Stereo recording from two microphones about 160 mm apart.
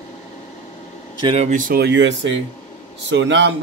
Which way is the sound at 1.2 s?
35° right (ahead or behind).